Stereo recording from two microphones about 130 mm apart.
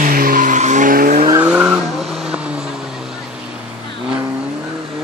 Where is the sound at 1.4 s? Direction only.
10° right (ahead or behind).